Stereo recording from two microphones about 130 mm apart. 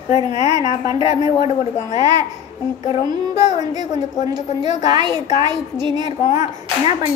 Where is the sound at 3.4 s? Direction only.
30° right (ahead or behind).